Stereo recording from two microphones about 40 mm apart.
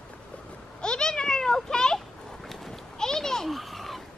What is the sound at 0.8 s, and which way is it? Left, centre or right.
Meow, left.